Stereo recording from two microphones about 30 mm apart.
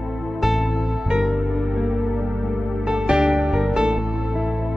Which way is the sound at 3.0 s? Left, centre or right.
Right.